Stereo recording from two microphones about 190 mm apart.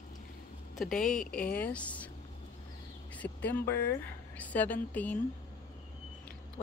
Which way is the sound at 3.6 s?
55° left (ahead or behind).